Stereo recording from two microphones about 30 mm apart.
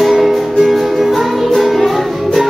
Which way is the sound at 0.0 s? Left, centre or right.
Centre.